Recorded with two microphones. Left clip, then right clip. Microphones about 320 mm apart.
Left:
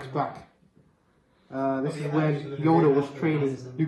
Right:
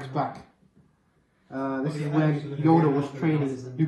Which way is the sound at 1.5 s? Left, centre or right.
Centre.